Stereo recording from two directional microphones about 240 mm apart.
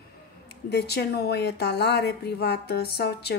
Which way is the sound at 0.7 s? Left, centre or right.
Left.